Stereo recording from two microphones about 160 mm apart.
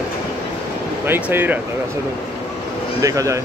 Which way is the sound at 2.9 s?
20° right (ahead or behind).